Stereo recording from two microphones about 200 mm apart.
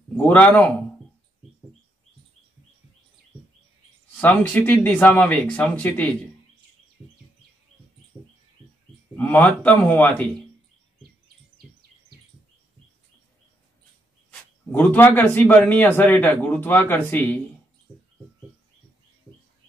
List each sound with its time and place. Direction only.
0.2 s a man's voice: 10° left (ahead or behind)
4.2 s a man's voice: 10° left (ahead or behind)
9.1 s a man's voice: 5° left (ahead or behind)
14.7 s a man's voice: 10° left (ahead or behind)